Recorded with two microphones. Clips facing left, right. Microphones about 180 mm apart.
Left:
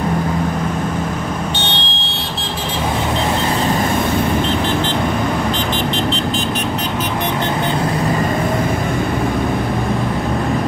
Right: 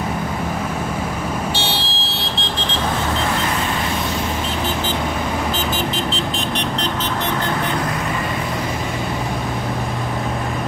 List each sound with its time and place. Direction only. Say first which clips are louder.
1.6 s vehicle: left 1 dB; 5° right (ahead or behind)